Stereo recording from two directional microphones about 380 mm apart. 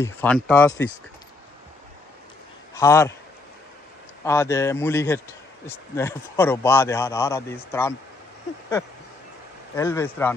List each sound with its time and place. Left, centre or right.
0.0 s speech: centre
2.7 s a man's voice: centre
4.2 s a man's voice: centre
9.8 s a man's voice: centre